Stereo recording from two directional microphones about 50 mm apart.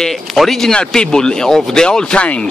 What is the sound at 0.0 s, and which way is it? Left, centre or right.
A man's voice, centre.